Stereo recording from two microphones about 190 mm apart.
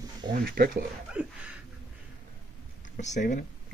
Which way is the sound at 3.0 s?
40° left (ahead or behind).